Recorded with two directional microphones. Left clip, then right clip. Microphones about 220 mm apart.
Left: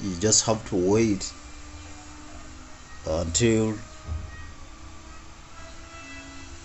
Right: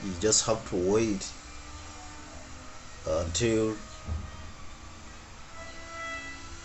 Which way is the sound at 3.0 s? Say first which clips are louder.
Left 4 dB; 35° left (ahead or behind).